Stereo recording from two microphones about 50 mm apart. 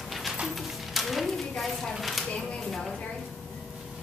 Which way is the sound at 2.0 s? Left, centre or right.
Centre.